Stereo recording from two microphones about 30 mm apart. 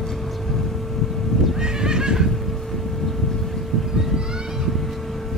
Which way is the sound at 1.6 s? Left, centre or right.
Right.